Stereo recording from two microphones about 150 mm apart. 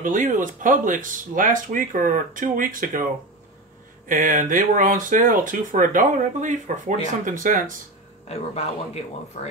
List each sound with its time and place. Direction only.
0.0 s speech: 60° right (ahead or behind)
4.1 s speech: 60° right (ahead or behind)
8.3 s speech: 45° left (ahead or behind)